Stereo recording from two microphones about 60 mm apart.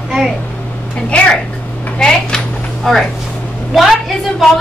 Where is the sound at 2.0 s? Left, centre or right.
Centre.